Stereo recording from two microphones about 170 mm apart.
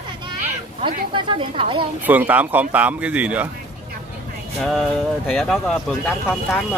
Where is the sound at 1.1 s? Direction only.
30° right (ahead or behind).